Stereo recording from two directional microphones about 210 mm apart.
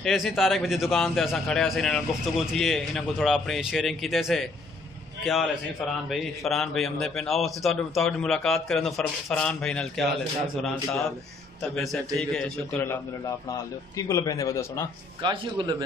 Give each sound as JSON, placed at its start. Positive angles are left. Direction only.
{"t": 0.0, "sound": "a man's voice", "side_deg": 0}
{"t": 15.2, "sound": "speech", "side_deg": -20}